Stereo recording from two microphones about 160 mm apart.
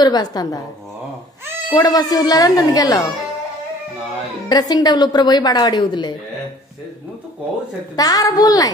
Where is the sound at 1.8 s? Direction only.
25° left (ahead or behind).